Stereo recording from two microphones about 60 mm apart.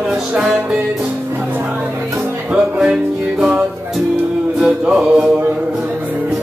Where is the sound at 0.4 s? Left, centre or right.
Centre.